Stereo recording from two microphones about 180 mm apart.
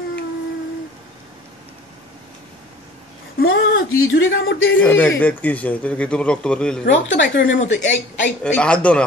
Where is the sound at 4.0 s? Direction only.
90° left.